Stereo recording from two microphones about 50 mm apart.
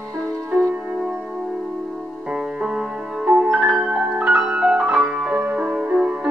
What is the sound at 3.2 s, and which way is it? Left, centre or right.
Music, centre.